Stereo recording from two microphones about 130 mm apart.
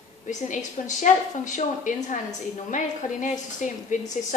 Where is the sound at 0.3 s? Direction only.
70° left (ahead or behind).